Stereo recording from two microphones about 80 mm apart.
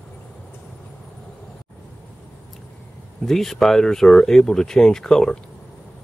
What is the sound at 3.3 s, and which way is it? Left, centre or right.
Speech, centre.